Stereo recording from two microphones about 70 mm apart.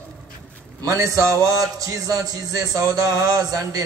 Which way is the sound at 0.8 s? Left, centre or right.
Right.